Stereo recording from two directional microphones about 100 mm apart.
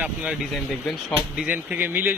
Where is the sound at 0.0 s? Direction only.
15° right (ahead or behind).